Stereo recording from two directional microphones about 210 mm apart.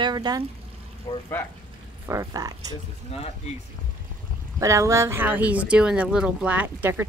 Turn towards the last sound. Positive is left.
turn(degrees=-10)  # may be behind; listen again after turning